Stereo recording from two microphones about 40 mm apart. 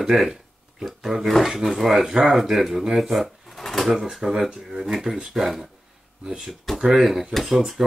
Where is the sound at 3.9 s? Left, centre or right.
Centre.